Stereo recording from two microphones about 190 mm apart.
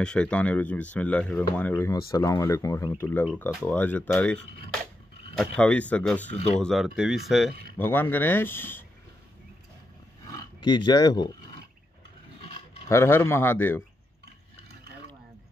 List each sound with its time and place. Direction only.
0.0 s speech: 5° left (ahead or behind)
7.7 s speech: 10° left (ahead or behind)
10.2 s speech: 20° left (ahead or behind)
12.4 s a sound: 30° left (ahead or behind)
12.8 s speech: 15° left (ahead or behind)